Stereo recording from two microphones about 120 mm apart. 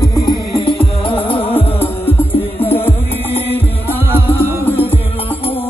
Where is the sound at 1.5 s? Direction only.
15° left (ahead or behind).